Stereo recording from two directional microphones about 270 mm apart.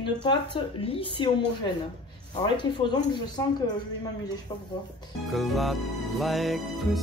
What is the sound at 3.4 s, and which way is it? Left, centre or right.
Speech, centre.